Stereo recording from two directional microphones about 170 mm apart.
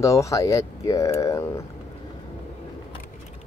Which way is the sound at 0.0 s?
20° left (ahead or behind).